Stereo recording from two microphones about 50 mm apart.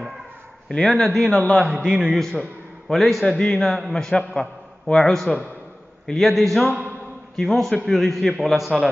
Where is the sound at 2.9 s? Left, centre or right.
Centre.